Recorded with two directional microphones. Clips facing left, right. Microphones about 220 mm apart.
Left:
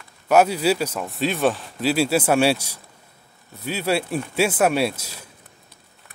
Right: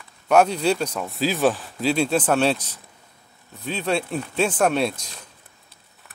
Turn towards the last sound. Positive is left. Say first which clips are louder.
# left 1 dB
turn(degrees=5)  # may be behind; listen again after turning